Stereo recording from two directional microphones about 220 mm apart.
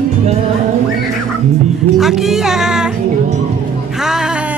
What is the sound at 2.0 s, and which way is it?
Speech, centre (ahead or behind).